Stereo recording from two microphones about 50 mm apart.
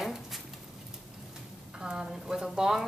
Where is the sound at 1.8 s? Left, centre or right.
Centre.